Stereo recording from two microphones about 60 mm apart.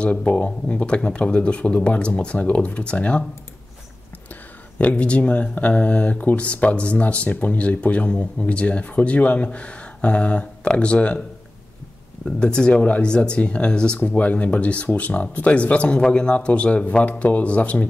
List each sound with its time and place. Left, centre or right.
0.0 s speech: left
4.7 s speech: left
12.3 s speech: centre